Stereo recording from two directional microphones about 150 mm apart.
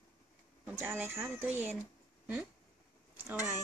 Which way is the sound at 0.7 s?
10° right (ahead or behind).